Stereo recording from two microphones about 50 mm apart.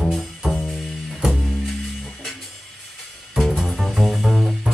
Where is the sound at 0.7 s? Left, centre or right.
Centre.